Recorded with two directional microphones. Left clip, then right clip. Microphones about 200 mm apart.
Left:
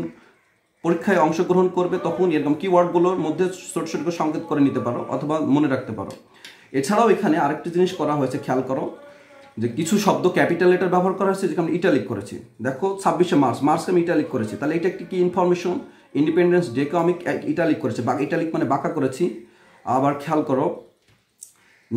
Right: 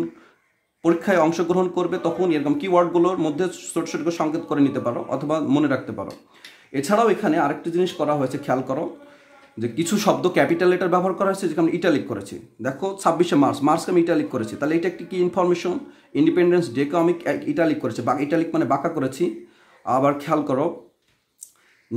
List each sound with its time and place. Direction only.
0.8 s speech: 35° right (ahead or behind)